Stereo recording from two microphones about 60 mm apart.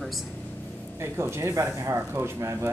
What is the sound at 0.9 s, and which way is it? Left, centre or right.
Speech, right.